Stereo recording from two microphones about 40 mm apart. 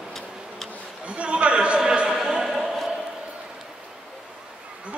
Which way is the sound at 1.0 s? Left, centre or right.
Right.